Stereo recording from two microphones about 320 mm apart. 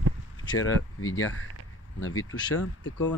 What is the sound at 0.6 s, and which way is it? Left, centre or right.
Speech, left.